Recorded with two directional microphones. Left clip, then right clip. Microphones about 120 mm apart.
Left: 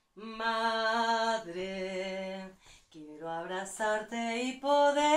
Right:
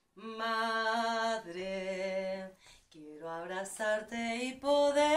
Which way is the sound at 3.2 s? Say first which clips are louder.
Left 2 dB; 25° right (ahead or behind).